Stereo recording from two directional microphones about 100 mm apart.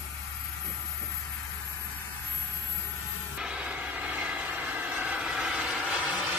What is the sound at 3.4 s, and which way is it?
Vehicle, 10° right (ahead or behind).